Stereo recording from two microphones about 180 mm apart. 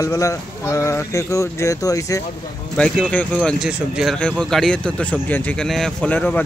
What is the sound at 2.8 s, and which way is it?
Speech, 5° left (ahead or behind).